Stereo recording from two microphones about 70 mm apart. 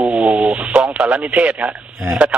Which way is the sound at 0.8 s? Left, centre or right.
Centre.